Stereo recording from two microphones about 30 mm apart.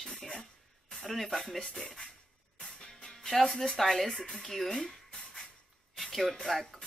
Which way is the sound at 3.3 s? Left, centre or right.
Centre.